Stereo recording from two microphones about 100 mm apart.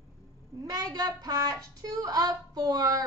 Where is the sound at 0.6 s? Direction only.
35° right (ahead or behind).